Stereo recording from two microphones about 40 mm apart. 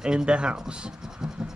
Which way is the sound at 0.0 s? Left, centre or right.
Centre.